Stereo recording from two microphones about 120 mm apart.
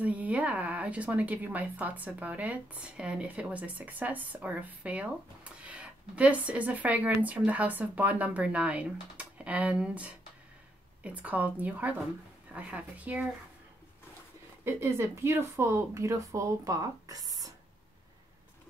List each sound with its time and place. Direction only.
0.0 s a woman's voice: 10° right (ahead or behind)
14.6 s a woman's voice: 25° right (ahead or behind)